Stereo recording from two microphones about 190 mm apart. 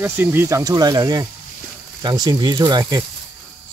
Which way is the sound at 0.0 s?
10° right (ahead or behind).